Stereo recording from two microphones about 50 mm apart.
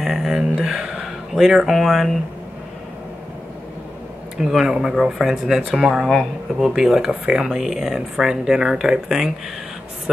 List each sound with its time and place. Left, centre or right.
0.0 s a sound: centre
0.7 s speech: centre
4.4 s speech: centre